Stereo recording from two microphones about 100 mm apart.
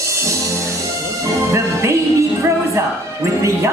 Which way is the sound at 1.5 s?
30° right (ahead or behind).